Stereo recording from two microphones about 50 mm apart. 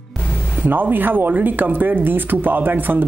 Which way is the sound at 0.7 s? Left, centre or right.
Right.